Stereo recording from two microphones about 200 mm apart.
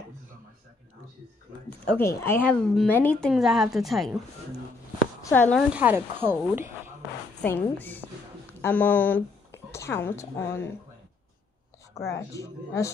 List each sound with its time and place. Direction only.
1.7 s speech: 10° left (ahead or behind)
5.2 s speech: 10° left (ahead or behind)
5.7 s speech: 5° right (ahead or behind)
7.4 s a woman's voice: 10° left (ahead or behind)
12.0 s speech: 15° left (ahead or behind)